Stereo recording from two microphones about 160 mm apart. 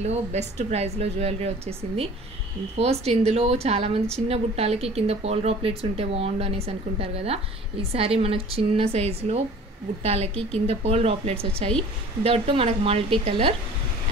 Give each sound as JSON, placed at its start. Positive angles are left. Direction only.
{"t": 0.0, "sound": "a woman's voice", "side_deg": -45}
{"t": 2.8, "sound": "speech", "side_deg": -40}